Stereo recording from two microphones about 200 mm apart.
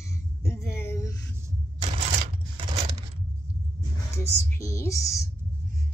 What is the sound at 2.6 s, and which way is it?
Coin, 30° right (ahead or behind).